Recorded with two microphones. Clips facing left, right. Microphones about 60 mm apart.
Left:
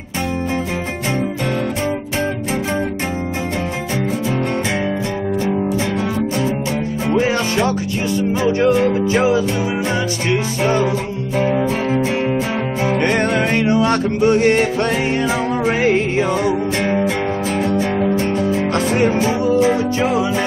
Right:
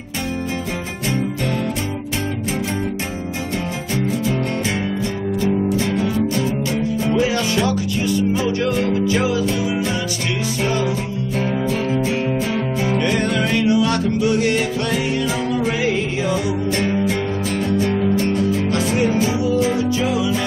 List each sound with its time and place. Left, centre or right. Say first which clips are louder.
7.2 s music: left 3 dB; left
11.3 s music: left 4 dB; left